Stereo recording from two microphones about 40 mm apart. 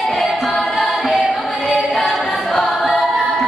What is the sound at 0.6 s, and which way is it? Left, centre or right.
Music, centre.